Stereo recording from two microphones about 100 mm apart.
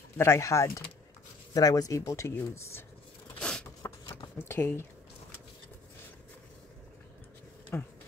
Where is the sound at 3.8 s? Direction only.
30° left (ahead or behind).